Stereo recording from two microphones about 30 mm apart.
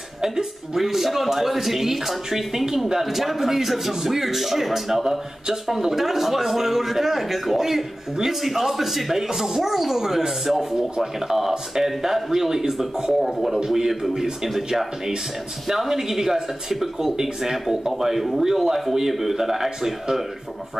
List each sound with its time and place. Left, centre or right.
0.7 s speech: centre
15.7 s speech: centre
17.9 s speech: centre
18.4 s speech: centre